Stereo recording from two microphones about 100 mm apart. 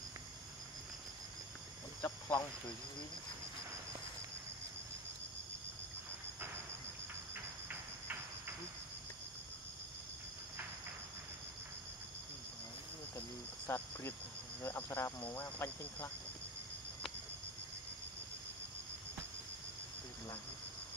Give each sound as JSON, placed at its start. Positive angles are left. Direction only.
{"t": 2.0, "sound": "a sound", "side_deg": 30}
{"t": 13.7, "sound": "cricket", "side_deg": 25}
{"t": 14.6, "sound": "speech", "side_deg": 25}